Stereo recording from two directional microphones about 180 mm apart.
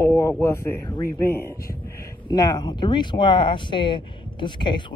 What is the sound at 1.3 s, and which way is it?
Speech, 15° left (ahead or behind).